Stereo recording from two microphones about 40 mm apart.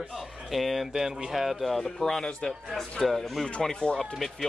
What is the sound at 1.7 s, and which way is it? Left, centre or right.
Speech, centre.